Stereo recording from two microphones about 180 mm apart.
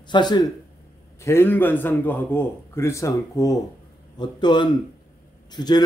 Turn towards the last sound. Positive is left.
turn(degrees=20)  # may be behind; listen again after turning